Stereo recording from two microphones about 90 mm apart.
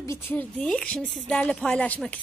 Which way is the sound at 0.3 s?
20° left (ahead or behind).